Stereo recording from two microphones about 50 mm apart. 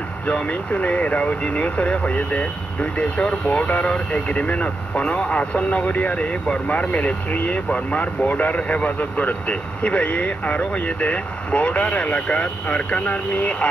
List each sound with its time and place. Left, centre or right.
0.3 s speech: left